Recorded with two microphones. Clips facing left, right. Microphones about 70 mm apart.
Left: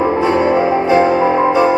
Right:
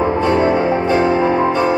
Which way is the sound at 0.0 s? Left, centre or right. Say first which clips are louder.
Left 1 dB; centre.